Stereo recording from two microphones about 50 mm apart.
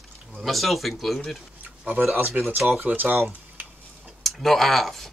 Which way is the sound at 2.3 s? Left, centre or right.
Right.